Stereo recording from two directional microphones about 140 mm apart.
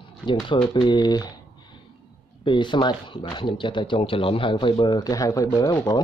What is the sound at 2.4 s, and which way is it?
Speech, 35° left (ahead or behind).